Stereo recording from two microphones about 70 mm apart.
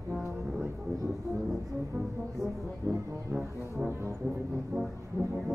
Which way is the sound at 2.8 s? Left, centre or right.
Right.